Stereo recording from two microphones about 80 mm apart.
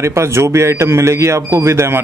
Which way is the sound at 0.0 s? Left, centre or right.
Right.